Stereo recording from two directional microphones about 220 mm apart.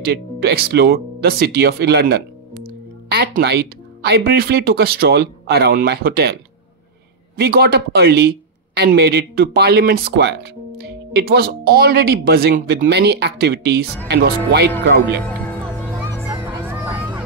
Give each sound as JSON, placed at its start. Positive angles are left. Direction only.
{"t": 0.0, "sound": "speech", "side_deg": -45}
{"t": 7.3, "sound": "speech", "side_deg": -45}
{"t": 16.6, "sound": "hubbub", "side_deg": -10}